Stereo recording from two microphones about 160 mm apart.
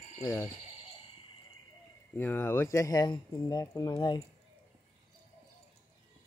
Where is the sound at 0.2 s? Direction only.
30° left (ahead or behind).